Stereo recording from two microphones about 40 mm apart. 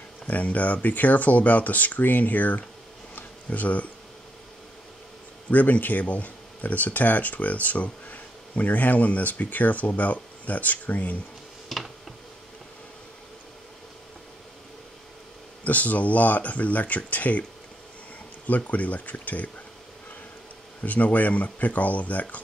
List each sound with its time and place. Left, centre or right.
0.3 s speech: left
5.5 s speech: left
11.7 s a sound: centre
15.6 s speech: left
18.5 s speech: left
20.8 s speech: left